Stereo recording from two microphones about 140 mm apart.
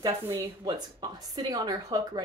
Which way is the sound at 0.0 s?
30° right (ahead or behind).